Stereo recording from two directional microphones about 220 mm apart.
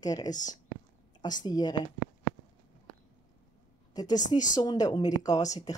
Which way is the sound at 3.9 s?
15° left (ahead or behind).